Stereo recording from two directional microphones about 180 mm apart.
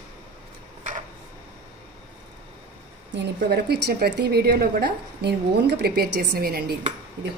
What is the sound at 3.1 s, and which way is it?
A woman's voice, 65° right (ahead or behind).